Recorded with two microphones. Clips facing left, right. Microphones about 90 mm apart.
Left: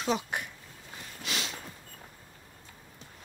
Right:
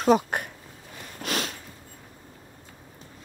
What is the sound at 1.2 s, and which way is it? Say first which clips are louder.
Sniff: right 7 dB; 50° right (ahead or behind).